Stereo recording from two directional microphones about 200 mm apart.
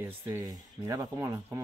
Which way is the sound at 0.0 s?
10° right (ahead or behind).